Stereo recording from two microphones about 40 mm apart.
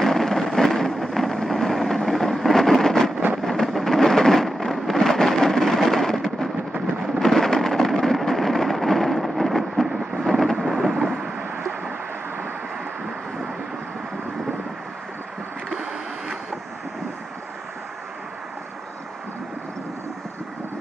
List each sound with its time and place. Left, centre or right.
0.0 s vehicle: centre
2.0 s a sound: centre
10.2 s thunder: centre
11.1 s thunder: right